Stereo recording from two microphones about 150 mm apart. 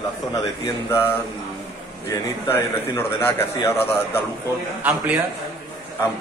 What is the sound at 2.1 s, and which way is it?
A man's voice, 15° left (ahead or behind).